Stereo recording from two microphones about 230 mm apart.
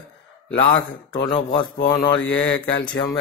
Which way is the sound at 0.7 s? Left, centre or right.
Centre.